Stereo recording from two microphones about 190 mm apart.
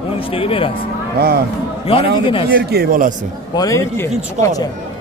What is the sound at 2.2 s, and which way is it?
Speech, 25° left (ahead or behind).